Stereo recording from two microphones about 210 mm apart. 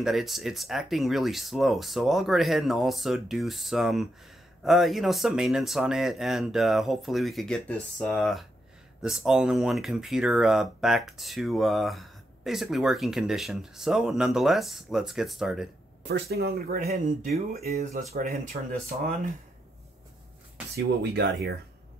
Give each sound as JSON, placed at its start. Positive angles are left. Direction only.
{"t": 0.0, "sound": "speech", "side_deg": 0}
{"t": 16.1, "sound": "speech", "side_deg": -50}
{"t": 18.1, "sound": "speech", "side_deg": -45}
{"t": 20.7, "sound": "speech", "side_deg": -50}